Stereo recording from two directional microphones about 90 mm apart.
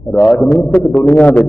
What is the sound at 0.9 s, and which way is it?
Speech, 15° left (ahead or behind).